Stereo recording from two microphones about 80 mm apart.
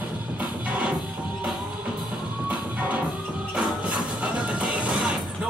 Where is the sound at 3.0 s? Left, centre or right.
Centre.